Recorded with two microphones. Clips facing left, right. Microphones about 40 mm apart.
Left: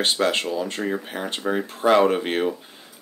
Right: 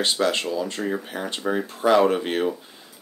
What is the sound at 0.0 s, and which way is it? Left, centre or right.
Speech, left.